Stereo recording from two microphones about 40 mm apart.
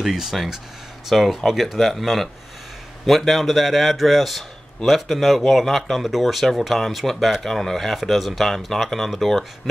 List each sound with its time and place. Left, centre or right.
0.0 s a man's voice: centre